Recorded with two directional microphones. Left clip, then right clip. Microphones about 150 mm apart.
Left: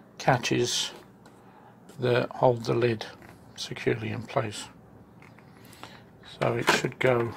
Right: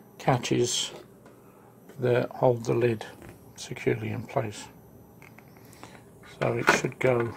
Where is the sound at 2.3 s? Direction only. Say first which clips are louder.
Left 1 dB; 10° right (ahead or behind).